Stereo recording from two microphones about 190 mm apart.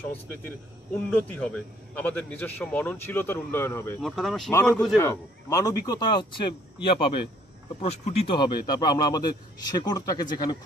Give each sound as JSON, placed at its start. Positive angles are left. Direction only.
{"t": 1.1, "sound": "a man's voice", "side_deg": 5}
{"t": 4.0, "sound": "a man's voice", "side_deg": 0}